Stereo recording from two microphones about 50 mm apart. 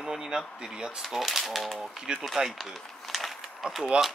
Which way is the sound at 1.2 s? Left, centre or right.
Centre.